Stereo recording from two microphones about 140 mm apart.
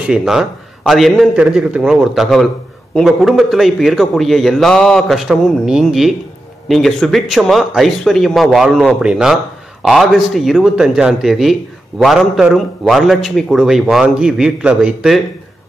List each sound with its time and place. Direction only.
0.0 s a man's voice: 5° right (ahead or behind)